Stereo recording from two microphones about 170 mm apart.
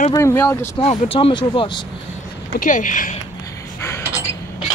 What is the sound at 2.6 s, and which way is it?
Speech, 50° left (ahead or behind).